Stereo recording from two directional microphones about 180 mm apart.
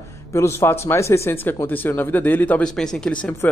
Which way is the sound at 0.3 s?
15° left (ahead or behind).